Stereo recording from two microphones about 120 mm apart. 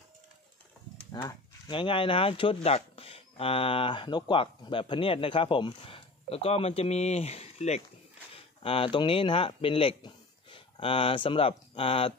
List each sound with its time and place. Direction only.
1.1 s speech: 40° left (ahead or behind); by 7.8 s 65° left (ahead or behind)
8.3 s speech: 50° left (ahead or behind)